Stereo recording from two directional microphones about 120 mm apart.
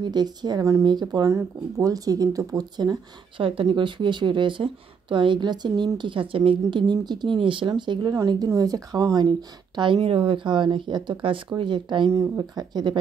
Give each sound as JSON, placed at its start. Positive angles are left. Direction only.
{"t": 0.0, "sound": "speech", "side_deg": -35}
{"t": 0.8, "sound": "a woman's voice", "side_deg": -35}
{"t": 9.9, "sound": "a woman's voice", "side_deg": -45}
{"t": 12.1, "sound": "speech", "side_deg": -30}